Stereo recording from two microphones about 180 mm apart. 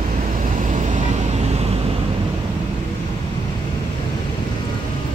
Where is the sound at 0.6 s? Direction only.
45° right (ahead or behind).